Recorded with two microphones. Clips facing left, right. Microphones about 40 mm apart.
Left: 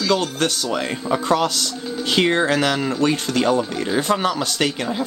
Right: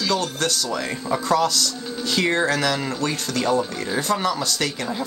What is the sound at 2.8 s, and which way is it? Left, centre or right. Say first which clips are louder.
Speech: left 5 dB; left.